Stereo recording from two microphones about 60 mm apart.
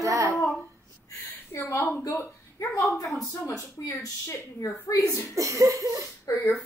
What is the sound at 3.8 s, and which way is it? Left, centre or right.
Speech, left.